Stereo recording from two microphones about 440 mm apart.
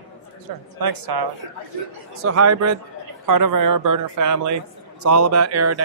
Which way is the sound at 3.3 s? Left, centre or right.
Right.